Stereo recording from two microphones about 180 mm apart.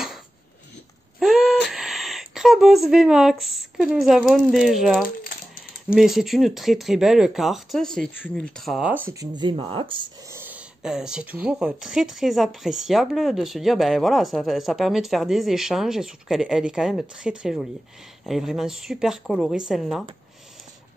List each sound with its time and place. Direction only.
1.2 s a sound: 5° right (ahead or behind)
1.7 s speech: centre (ahead or behind)
5.2 s typewriter: 55° left (ahead or behind)
5.9 s speech: centre (ahead or behind)
9.3 s speech: 25° right (ahead or behind)
10.3 s speech: 10° right (ahead or behind)